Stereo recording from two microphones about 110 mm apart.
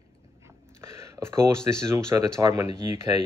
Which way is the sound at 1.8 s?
25° right (ahead or behind).